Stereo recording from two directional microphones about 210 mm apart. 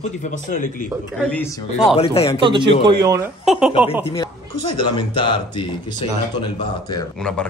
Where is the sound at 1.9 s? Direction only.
25° left (ahead or behind).